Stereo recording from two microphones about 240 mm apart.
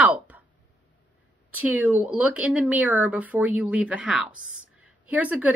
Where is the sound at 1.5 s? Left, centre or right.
Centre.